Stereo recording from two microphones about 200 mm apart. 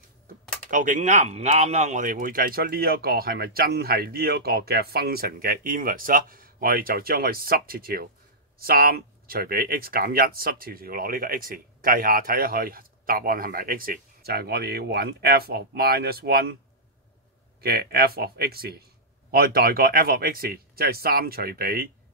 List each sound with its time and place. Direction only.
0.7 s speech: 40° right (ahead or behind)
17.6 s speech: 50° right (ahead or behind)